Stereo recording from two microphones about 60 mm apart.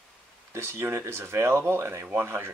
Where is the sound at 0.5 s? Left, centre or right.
Right.